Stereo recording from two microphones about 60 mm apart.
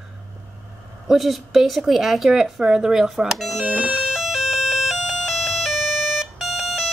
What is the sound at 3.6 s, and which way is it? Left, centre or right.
Speech, right.